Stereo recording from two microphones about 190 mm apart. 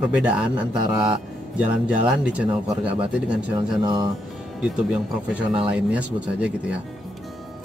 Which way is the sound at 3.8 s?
25° right (ahead or behind).